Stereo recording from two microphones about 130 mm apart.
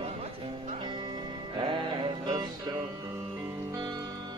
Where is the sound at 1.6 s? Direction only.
40° right (ahead or behind).